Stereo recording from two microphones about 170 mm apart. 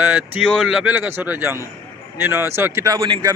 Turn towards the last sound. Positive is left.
turn(degrees=-20)  # may be behind; listen again after turning